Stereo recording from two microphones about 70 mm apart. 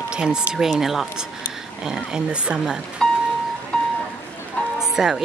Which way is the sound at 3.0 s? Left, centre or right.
Centre.